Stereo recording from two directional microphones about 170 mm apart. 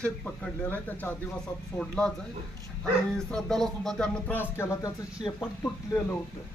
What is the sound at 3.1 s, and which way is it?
Speech, 5° left (ahead or behind).